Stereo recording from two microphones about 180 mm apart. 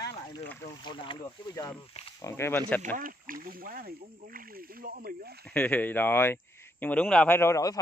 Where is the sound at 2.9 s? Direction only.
50° right (ahead or behind).